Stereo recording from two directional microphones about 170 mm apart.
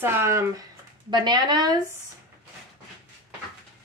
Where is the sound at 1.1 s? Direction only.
25° right (ahead or behind).